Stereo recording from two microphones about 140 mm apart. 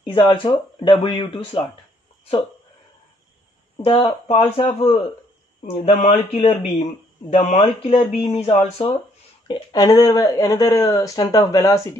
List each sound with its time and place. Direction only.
0.0 s speech: 35° left (ahead or behind)
3.8 s speech: 40° left (ahead or behind)
5.9 s speech: 55° left (ahead or behind)
9.5 s speech: 30° left (ahead or behind)